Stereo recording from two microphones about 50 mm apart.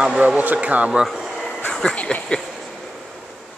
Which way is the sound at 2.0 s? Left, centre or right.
Left.